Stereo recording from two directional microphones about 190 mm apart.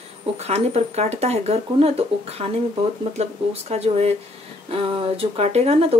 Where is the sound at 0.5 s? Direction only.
35° right (ahead or behind).